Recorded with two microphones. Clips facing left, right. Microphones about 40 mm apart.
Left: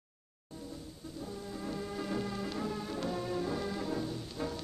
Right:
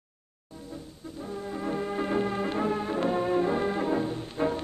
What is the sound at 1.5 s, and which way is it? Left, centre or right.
Music, right.